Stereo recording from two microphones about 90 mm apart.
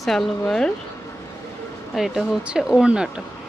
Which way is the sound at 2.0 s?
5° right (ahead or behind).